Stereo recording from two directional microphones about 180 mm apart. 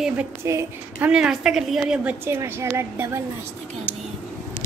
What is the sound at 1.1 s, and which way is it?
A woman's voice, 5° right (ahead or behind).